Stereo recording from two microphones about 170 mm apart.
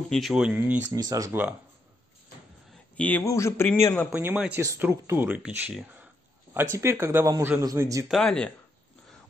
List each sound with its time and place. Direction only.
0.1 s speech: centre (ahead or behind)
0.9 s speech: 20° right (ahead or behind)
3.0 s speech: 10° left (ahead or behind)
4.1 s speech: 10° right (ahead or behind)
8.1 s speech: 5° left (ahead or behind)